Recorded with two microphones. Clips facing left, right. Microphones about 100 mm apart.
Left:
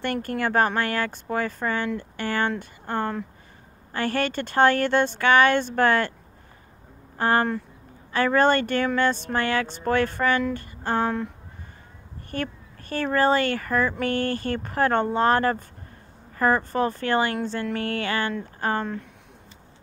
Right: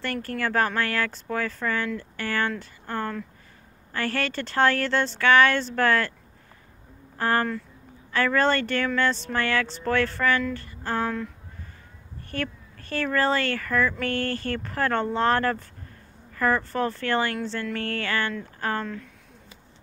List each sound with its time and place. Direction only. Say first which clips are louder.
0.0 s speech: left 3 dB; 20° left (ahead or behind)
7.2 s speech: left 2 dB; 20° left (ahead or behind)
12.3 s speech: left 1 dB; 15° left (ahead or behind)